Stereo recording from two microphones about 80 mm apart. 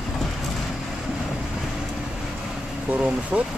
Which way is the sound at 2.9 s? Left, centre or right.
Centre.